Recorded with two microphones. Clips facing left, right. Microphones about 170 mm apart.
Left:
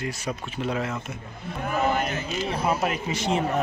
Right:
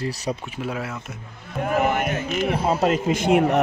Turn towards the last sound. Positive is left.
turn(degrees=-60)  # may be behind; listen again after turning